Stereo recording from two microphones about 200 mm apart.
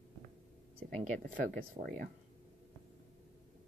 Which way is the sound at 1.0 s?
40° right (ahead or behind).